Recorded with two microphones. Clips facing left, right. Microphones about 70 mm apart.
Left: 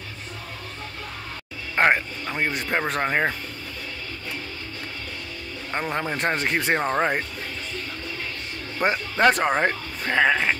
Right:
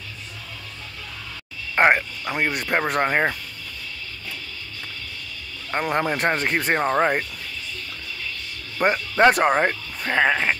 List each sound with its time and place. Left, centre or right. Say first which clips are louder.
1.8 s speech: right 2 dB; centre
5.8 s speech: right 4 dB; centre
6.1 s speech: right 2 dB; centre
8.8 s speech: right 3 dB; centre